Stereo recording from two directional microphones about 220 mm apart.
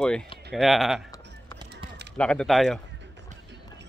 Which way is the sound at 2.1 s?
5° left (ahead or behind).